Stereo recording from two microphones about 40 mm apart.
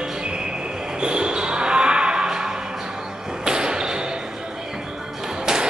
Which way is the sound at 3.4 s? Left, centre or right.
Centre.